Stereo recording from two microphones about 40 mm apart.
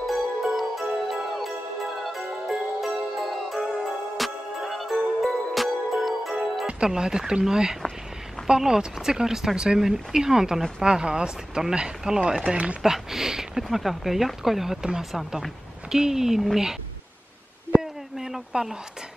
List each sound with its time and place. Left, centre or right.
0.0 s music: centre
6.8 s speech: centre
12.4 s speech: right
12.8 s speech: centre
15.9 s speech: centre
18.1 s a sound: centre